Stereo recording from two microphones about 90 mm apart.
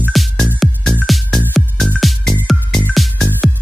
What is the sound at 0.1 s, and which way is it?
Music, centre (ahead or behind).